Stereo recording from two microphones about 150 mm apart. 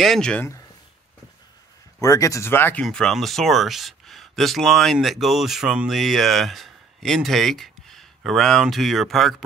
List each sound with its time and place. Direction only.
0.0 s speech: 5° left (ahead or behind)
2.0 s speech: 20° left (ahead or behind); by 9.4 s centre (ahead or behind)